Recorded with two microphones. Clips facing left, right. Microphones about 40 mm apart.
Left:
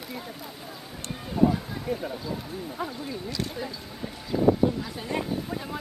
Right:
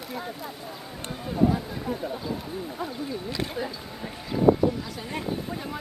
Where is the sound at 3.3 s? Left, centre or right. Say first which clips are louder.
Right 2 dB; right.